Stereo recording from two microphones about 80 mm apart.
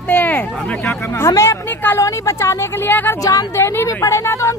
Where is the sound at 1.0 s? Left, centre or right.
Left.